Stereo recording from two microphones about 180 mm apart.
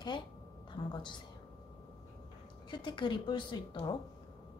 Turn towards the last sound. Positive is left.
turn(degrees=25)  # may be behind; listen again after turning